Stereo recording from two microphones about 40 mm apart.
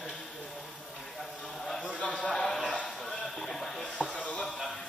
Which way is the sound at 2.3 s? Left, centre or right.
Centre.